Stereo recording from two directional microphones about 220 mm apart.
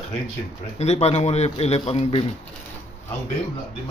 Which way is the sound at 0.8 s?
30° left (ahead or behind).